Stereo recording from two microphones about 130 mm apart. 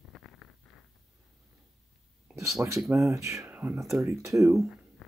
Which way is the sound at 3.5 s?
10° right (ahead or behind).